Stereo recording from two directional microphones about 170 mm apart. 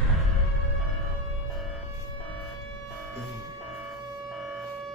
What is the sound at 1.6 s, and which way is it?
Siren, centre (ahead or behind).